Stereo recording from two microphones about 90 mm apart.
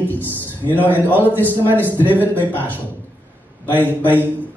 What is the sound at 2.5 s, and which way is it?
Speech, 20° left (ahead or behind).